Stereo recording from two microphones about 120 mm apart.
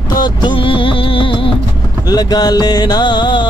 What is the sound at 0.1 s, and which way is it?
Music, 40° left (ahead or behind).